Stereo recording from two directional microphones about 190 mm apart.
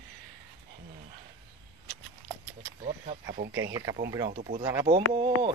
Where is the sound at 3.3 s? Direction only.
55° right (ahead or behind).